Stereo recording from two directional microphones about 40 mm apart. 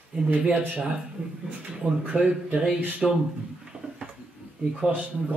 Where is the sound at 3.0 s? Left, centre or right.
Centre.